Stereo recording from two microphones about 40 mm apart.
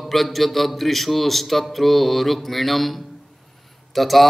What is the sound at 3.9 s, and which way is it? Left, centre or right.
Speech, centre.